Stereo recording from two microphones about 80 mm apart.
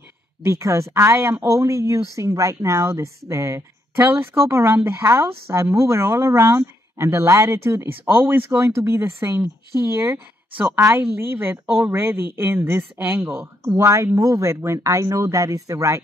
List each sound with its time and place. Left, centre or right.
0.4 s a woman's voice: right